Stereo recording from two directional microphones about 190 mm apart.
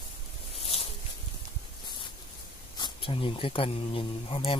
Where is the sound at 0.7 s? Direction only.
30° left (ahead or behind).